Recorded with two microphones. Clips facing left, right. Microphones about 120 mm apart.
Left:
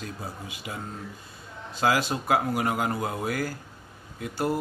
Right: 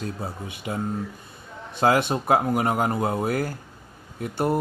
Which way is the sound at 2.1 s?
25° right (ahead or behind).